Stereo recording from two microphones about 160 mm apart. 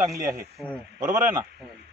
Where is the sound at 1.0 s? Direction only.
55° right (ahead or behind).